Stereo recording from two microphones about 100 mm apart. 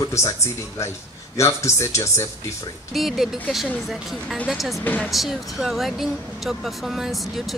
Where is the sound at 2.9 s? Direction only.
5° right (ahead or behind).